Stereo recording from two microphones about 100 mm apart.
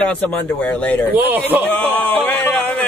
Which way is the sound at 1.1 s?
20° right (ahead or behind).